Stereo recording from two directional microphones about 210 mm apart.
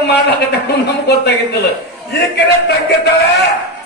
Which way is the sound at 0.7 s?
55° left (ahead or behind).